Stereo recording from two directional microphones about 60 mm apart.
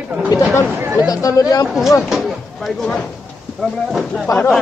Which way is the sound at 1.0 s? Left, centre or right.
Left.